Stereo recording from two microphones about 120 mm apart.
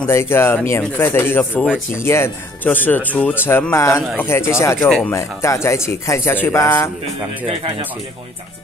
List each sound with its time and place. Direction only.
0.0 s speech: 20° left (ahead or behind)
4.7 s speech: centre (ahead or behind)
5.1 s speech: 25° left (ahead or behind)